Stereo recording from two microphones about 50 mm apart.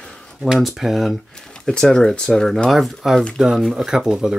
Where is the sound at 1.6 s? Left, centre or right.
Centre.